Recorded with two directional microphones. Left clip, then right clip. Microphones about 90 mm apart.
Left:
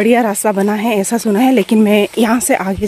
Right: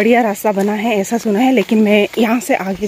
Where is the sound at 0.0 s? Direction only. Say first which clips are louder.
Even; 30° left (ahead or behind).